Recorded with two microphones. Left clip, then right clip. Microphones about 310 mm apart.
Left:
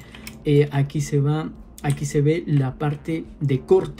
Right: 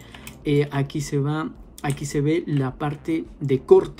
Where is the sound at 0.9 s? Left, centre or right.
Centre.